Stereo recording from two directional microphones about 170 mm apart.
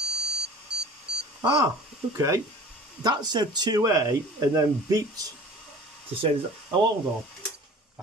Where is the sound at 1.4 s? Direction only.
20° right (ahead or behind).